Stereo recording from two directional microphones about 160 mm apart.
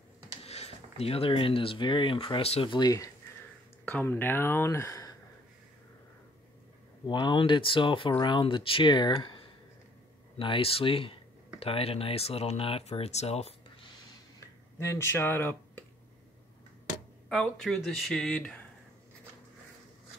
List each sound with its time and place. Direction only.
0.4 s speech: 40° left (ahead or behind); by 3.1 s 25° left (ahead or behind)
3.8 s speech: 15° left (ahead or behind)
7.1 s speech: 30° left (ahead or behind)
14.8 s speech: 15° left (ahead or behind)
17.3 s speech: 5° left (ahead or behind)